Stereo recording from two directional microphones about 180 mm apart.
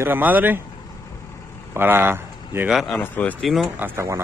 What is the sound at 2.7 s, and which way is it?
Speech, centre (ahead or behind).